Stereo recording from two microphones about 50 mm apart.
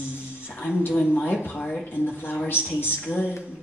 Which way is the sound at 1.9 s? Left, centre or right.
Left.